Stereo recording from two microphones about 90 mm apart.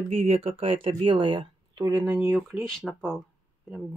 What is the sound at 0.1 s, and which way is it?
Speech, 90° right.